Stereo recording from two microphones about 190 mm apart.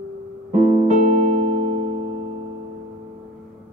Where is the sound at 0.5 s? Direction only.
35° right (ahead or behind).